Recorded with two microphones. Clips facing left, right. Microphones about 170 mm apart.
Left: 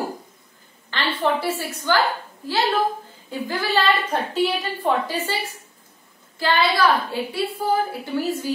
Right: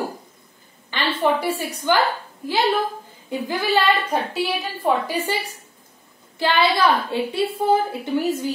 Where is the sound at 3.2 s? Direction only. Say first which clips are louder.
Right 2 dB; 15° right (ahead or behind).